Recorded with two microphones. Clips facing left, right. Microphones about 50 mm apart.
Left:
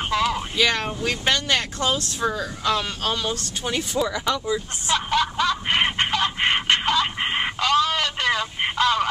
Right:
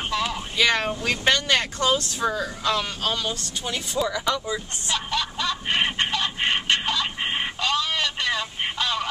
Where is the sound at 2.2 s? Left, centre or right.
Centre.